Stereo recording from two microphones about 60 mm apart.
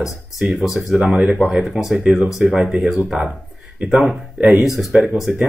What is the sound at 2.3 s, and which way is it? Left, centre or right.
Speech, centre.